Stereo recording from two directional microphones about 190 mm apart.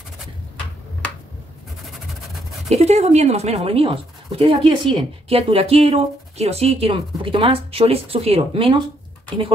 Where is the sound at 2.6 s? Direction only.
35° right (ahead or behind).